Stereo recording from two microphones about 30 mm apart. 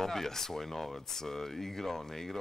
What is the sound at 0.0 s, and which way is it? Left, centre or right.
Speech, centre.